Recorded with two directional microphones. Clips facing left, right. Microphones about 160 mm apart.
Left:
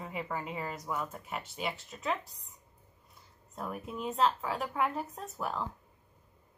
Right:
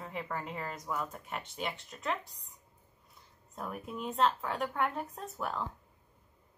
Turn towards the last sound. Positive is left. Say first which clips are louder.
# left 1 dB
turn(degrees=0)  # may be behind; listen again after turning